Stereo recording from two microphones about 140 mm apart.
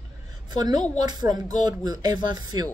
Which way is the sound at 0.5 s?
30° right (ahead or behind).